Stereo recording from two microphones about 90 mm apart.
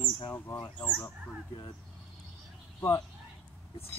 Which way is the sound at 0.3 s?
30° left (ahead or behind).